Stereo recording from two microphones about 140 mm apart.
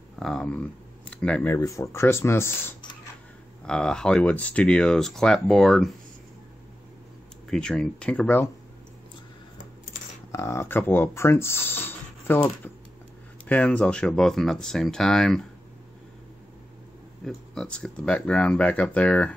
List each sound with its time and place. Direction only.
0.2 s speech: 5° left (ahead or behind)
1.5 s speech: 20° left (ahead or behind)
3.6 s speech: 5° left (ahead or behind)
7.4 s speech: 5° left (ahead or behind)
10.3 s speech: 20° left (ahead or behind); by 15.4 s 5° left (ahead or behind)
17.2 s speech: 5° left (ahead or behind)